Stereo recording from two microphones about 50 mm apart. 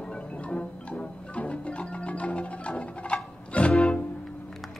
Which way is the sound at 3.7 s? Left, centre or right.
Centre.